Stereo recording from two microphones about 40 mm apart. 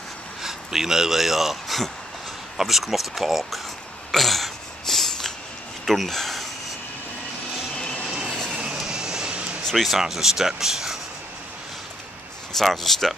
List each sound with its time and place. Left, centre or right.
0.4 s speech: centre
4.1 s throat clearing: centre
5.9 s speech: centre
8.1 s vehicle: centre
9.3 s a sound: right
9.8 s speech: centre
12.5 s speech: centre